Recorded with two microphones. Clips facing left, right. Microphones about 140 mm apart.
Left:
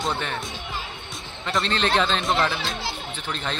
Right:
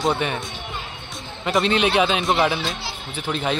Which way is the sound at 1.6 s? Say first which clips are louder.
Right 3 dB; 10° right (ahead or behind).